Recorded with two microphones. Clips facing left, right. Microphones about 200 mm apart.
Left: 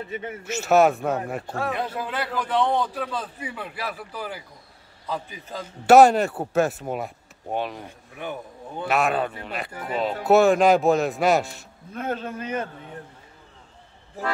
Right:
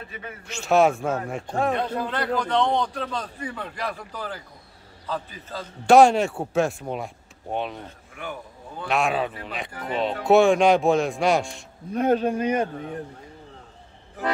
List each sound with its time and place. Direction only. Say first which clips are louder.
0.1 s a man's voice: left 6 dB; 25° left (ahead or behind)
0.4 s a man's voice: left 1 dB; 5° left (ahead or behind)
5.9 s speech: left 1 dB; centre (ahead or behind)
7.8 s a man's voice: left 2 dB; 20° left (ahead or behind)
8.8 s speech: left 1 dB; centre (ahead or behind)
11.9 s speech: right 8 dB; 15° right (ahead or behind)